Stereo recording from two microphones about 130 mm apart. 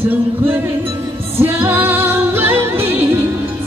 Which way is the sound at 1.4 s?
15° right (ahead or behind).